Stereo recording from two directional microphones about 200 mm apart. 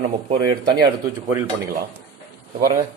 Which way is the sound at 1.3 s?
20° right (ahead or behind).